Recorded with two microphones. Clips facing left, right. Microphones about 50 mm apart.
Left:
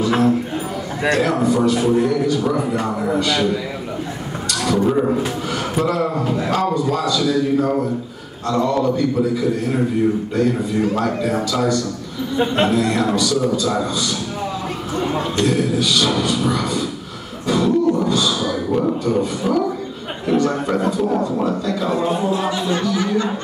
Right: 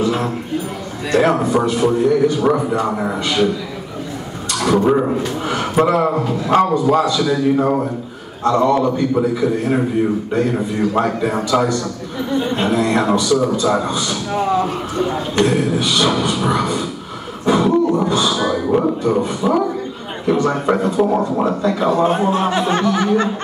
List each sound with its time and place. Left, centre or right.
1.1 s a man's voice: right
4.6 s a man's voice: right
11.0 s a man's voice: right
17.5 s throat clearing: right
18.7 s a man's voice: right